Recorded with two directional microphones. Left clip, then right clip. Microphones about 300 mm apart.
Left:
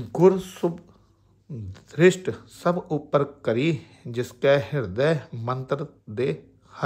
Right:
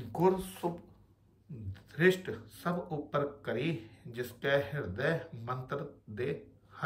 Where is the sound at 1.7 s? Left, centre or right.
Centre.